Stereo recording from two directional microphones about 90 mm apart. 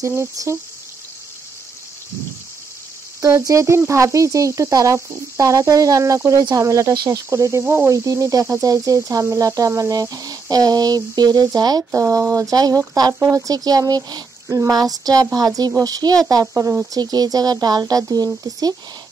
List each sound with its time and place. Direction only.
0.0 s speech: 30° right (ahead or behind)
3.2 s speech: 35° right (ahead or behind)
17.0 s speech: 45° right (ahead or behind)